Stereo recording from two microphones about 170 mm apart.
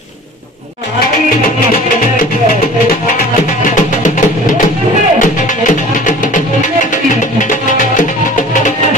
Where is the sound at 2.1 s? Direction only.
60° left (ahead or behind).